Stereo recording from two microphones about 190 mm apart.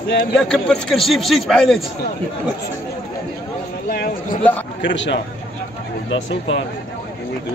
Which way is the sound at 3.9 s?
50° left (ahead or behind).